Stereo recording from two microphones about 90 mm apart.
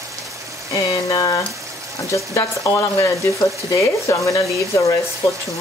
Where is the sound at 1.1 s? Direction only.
40° left (ahead or behind).